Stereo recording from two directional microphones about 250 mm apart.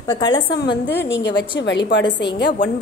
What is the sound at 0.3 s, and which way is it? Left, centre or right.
A woman's voice, left.